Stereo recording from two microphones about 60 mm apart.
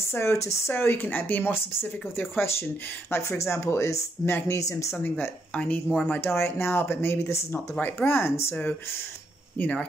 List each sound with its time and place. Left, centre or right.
0.0 s speech: left
0.7 s speech: left
3.1 s speech: left
5.5 s speech: left
6.2 s speech: left
9.6 s speech: left